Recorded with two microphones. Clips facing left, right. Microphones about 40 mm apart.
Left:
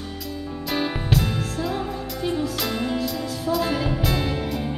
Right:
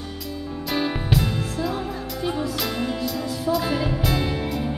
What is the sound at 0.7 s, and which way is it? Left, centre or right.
Music, centre.